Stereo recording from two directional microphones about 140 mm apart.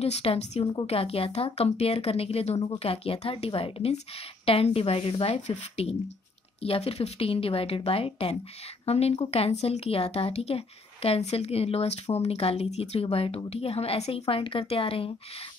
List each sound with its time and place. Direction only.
0.0 s a woman's voice: 45° left (ahead or behind)